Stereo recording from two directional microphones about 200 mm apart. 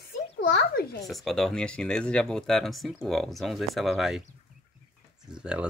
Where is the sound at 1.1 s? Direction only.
Centre (ahead or behind).